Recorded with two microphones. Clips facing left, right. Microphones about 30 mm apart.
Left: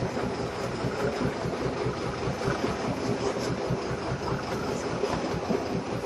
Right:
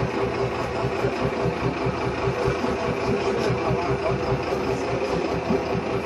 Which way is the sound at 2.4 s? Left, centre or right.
Centre.